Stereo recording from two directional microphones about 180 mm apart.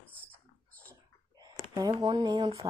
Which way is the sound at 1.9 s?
25° right (ahead or behind).